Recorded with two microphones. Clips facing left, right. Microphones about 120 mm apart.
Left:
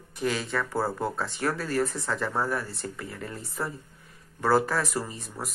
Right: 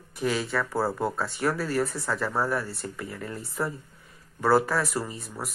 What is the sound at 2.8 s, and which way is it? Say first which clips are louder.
Speech: right 1 dB; 25° right (ahead or behind).